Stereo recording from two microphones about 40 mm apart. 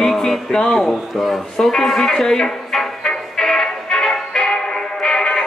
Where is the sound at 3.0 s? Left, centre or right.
Centre.